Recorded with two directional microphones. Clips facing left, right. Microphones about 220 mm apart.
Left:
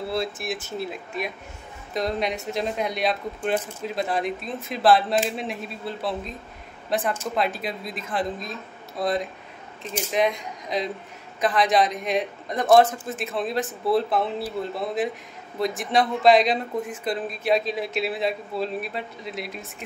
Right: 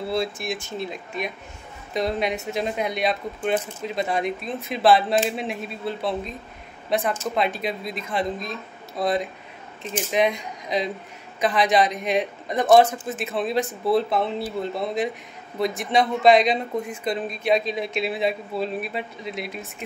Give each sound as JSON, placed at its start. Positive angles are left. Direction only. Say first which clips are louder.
{"t": 0.1, "sound": "speech", "louder": "right 3 dB", "side_deg": 0}